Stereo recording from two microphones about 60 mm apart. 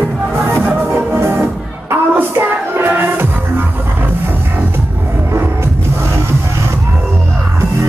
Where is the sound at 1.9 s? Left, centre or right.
Right.